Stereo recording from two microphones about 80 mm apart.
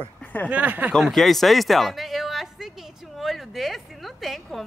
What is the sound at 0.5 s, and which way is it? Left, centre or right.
Speech, centre.